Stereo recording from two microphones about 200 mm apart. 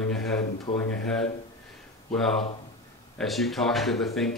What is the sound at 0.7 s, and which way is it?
Speech, 30° left (ahead or behind).